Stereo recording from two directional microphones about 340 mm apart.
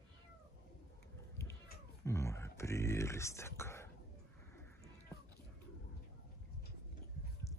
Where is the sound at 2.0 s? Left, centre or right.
Centre.